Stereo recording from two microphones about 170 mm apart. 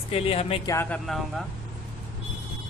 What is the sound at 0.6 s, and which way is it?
Speech, 15° left (ahead or behind).